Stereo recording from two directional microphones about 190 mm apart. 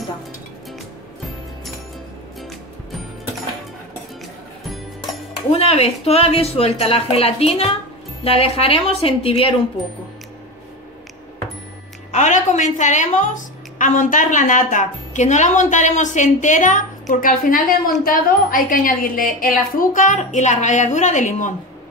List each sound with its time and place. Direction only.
5.5 s a woman's voice: 30° left (ahead or behind)
12.1 s a woman's voice: 40° left (ahead or behind)